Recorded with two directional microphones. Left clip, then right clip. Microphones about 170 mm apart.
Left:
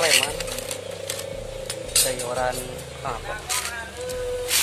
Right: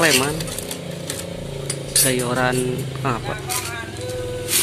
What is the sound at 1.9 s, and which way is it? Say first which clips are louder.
Speech: right 4 dB; centre (ahead or behind).